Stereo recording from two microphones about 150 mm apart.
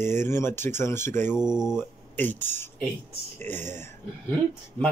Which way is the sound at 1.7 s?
15° left (ahead or behind).